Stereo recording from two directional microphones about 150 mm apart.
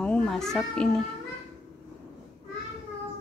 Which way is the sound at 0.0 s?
5° left (ahead or behind).